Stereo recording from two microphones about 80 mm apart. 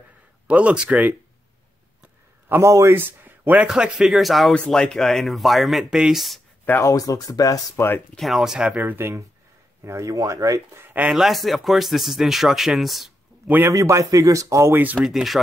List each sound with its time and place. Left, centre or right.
0.5 s speech: centre
2.6 s speech: right
3.0 s speech: right
3.6 s speech: centre
6.8 s speech: left
8.2 s speech: centre
8.9 s speech: right
9.8 s speech: right
10.8 s a sound: right
11.1 s speech: centre
13.7 s speech: right
15.0 s speech: centre